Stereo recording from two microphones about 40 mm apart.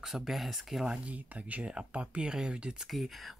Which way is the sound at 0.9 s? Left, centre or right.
Right.